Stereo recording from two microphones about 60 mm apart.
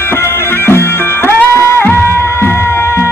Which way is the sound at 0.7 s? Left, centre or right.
Left.